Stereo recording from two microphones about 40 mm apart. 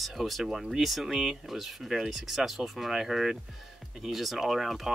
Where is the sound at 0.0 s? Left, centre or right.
Centre.